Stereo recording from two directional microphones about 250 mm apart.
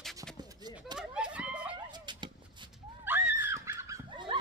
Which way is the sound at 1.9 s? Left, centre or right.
Centre.